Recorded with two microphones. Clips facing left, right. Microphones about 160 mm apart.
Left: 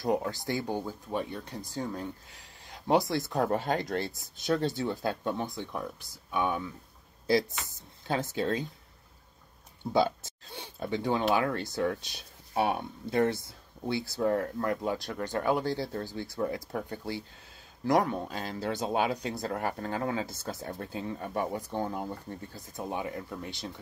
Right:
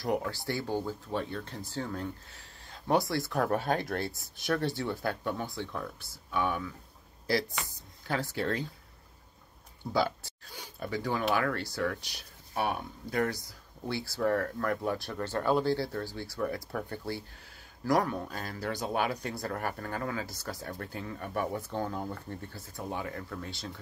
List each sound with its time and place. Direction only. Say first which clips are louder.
0.0 s speech: left 2 dB; 20° left (ahead or behind)
9.9 s speech: left 3 dB; 20° left (ahead or behind)